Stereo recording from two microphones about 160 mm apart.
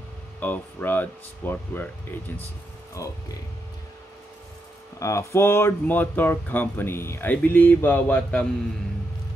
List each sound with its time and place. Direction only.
0.4 s speech: 10° left (ahead or behind)
4.9 s speech: 20° left (ahead or behind)